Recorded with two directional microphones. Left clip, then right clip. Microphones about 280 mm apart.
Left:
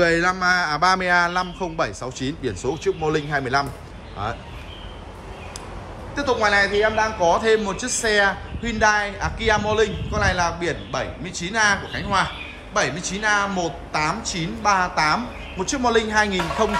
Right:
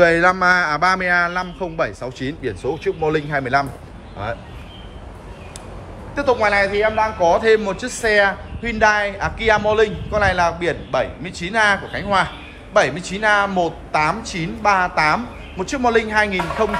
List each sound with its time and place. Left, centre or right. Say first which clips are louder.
0.0 s a man's voice: right 5 dB; centre
6.1 s a man's voice: right 2 dB; centre